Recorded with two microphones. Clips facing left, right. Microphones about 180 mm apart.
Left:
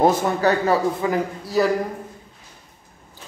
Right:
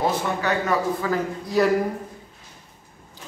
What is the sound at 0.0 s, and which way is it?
Speech, 35° left (ahead or behind).